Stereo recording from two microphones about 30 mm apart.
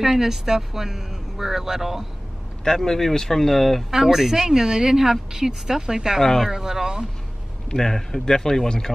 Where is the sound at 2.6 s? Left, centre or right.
Centre.